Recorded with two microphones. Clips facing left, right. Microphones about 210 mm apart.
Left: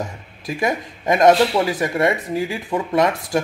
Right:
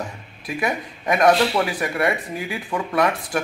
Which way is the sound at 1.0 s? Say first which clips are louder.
Left 3 dB; 25° left (ahead or behind).